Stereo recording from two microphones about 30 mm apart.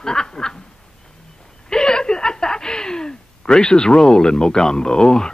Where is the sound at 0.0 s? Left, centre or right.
Left.